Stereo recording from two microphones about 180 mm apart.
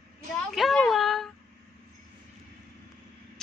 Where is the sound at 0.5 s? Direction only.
Centre (ahead or behind).